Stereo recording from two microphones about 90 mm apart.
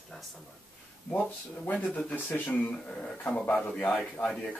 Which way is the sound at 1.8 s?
10° left (ahead or behind).